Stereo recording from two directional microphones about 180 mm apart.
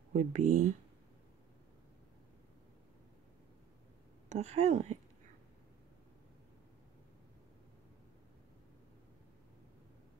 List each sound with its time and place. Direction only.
0.1 s speech: 50° right (ahead or behind)
4.3 s a woman's voice: 40° right (ahead or behind)